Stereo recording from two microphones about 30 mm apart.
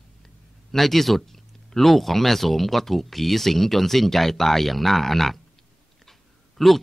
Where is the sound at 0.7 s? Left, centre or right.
Centre.